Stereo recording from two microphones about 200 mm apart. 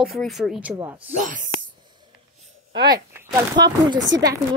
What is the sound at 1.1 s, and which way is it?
Speech, 40° right (ahead or behind).